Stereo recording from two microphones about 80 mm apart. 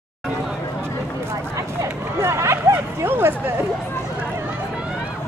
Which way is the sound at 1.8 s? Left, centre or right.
Right.